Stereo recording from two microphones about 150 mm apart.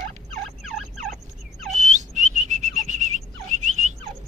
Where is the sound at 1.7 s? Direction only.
55° right (ahead or behind).